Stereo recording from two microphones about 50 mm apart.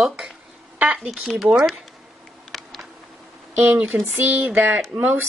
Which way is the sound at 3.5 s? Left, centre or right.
Right.